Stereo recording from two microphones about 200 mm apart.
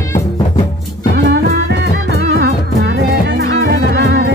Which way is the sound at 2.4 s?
60° right (ahead or behind).